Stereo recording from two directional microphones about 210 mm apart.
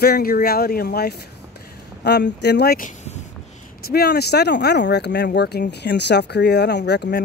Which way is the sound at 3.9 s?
50° left (ahead or behind).